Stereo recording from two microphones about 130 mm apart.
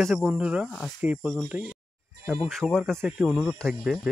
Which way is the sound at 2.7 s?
5° left (ahead or behind).